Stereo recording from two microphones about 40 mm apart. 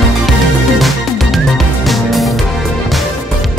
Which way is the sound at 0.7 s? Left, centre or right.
Centre.